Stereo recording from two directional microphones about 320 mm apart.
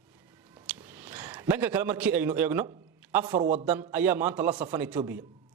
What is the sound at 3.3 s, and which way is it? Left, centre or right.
Speech, right.